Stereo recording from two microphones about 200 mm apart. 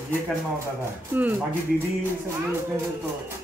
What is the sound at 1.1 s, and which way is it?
Speech, 10° right (ahead or behind).